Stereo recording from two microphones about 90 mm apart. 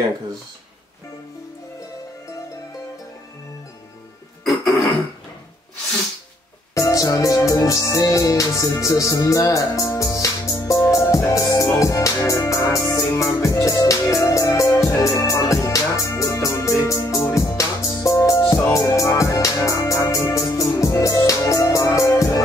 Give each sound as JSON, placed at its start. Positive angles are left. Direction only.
{"t": 4.5, "sound": "throat clearing", "side_deg": 0}
{"t": 6.7, "sound": "music", "side_deg": 35}